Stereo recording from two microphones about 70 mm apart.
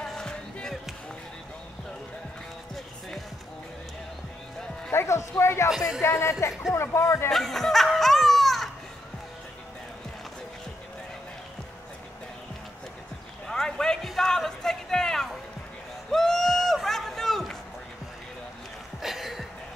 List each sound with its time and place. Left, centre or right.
0.1 s music: centre
4.9 s speech: left
5.7 s speech: centre
6.0 s speech: left
7.2 s laughter: centre
13.5 s a sound: centre
18.9 s a sound: centre